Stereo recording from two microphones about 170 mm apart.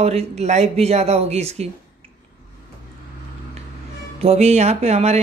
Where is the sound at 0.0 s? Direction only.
40° right (ahead or behind).